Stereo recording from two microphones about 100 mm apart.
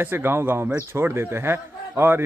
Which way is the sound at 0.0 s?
20° right (ahead or behind).